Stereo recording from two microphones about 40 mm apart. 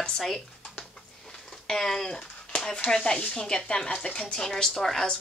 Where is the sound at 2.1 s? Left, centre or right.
Left.